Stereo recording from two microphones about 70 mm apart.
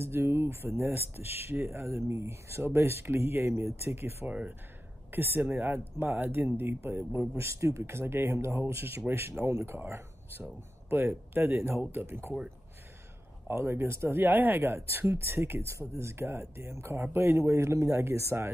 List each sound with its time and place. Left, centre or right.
0.0 s speech: right
4.3 s speech: right
13.5 s speech: right